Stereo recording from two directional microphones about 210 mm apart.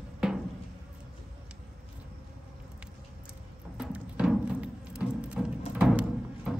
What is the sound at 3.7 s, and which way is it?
Music, 5° right (ahead or behind).